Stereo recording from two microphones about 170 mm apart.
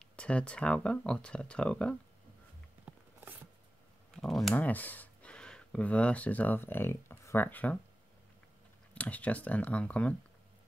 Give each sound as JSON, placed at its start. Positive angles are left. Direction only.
{"t": 0.0, "sound": "speech", "side_deg": 5}
{"t": 2.8, "sound": "a sound", "side_deg": -10}
{"t": 4.2, "sound": "speech", "side_deg": 0}
{"t": 8.9, "sound": "speech", "side_deg": 10}